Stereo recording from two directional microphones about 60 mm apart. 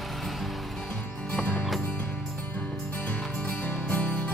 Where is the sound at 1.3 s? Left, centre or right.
Centre.